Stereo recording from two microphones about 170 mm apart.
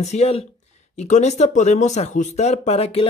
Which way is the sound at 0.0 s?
40° left (ahead or behind).